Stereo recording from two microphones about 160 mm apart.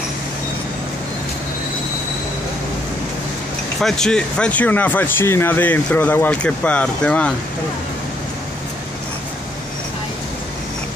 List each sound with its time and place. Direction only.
3.8 s speech: 5° left (ahead or behind)